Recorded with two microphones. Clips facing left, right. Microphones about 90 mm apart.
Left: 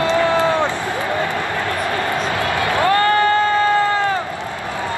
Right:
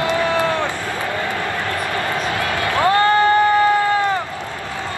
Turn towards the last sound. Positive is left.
turn(degrees=-15)  # may be behind; listen again after turning